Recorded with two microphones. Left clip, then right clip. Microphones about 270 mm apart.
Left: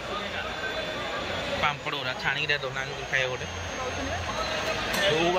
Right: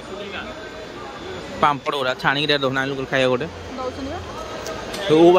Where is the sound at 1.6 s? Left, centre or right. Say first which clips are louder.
Right 12 dB; right.